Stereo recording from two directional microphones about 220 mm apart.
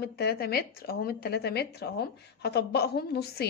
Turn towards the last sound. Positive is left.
turn(degrees=45)  # may be behind; listen again after turning